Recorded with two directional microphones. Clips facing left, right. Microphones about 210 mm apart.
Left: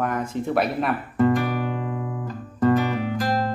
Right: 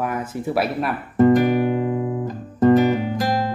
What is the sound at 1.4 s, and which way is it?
Music, 10° right (ahead or behind).